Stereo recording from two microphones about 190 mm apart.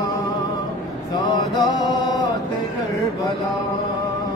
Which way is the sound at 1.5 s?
20° left (ahead or behind).